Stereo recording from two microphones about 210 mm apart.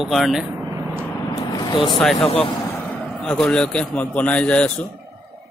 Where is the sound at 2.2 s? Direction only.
30° left (ahead or behind).